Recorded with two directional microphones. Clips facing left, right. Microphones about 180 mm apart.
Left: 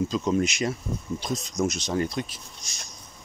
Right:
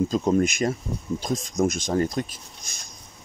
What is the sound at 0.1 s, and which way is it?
Speech, 45° right (ahead or behind).